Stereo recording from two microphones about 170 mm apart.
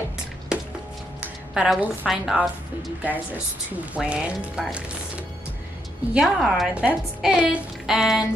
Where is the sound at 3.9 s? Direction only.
5° right (ahead or behind).